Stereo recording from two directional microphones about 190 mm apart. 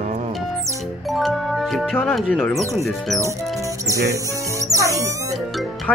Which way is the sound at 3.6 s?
15° right (ahead or behind).